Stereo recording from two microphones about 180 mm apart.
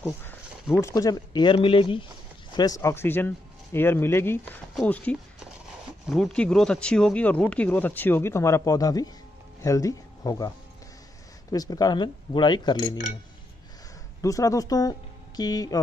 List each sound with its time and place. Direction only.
0.0 s speech: 10° left (ahead or behind)
11.5 s speech: 20° left (ahead or behind)
14.2 s speech: 20° left (ahead or behind)